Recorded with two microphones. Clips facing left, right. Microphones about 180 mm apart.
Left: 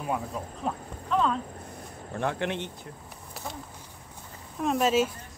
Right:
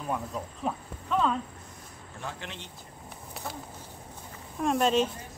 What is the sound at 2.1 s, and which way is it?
Speech, 65° left (ahead or behind).